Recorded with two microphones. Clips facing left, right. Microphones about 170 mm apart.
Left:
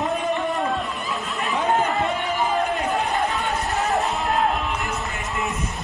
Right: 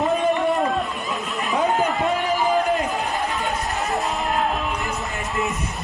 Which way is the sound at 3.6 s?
Centre (ahead or behind).